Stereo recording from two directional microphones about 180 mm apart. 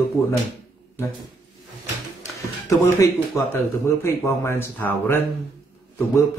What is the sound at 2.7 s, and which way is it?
A man's voice, 15° left (ahead or behind).